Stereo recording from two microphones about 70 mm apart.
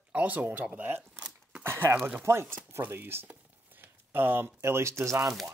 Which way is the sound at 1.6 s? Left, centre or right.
Right.